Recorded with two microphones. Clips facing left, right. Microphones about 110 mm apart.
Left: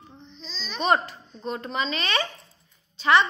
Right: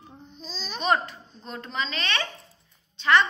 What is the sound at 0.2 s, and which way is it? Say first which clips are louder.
Babbling: right 2 dB; 45° right (ahead or behind).